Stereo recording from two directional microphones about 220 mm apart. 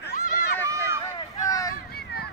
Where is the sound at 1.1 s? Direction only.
15° left (ahead or behind).